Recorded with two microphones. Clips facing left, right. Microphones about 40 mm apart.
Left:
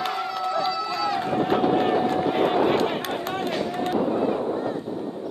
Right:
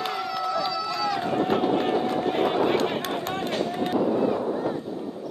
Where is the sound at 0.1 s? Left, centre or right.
Centre.